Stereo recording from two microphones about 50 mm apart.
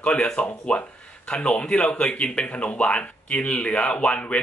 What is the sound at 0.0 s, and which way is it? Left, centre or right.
A man's voice, left.